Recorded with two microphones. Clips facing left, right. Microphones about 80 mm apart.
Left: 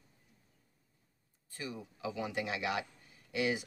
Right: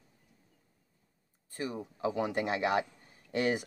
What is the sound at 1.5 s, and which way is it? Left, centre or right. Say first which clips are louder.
Speech: right 6 dB; right.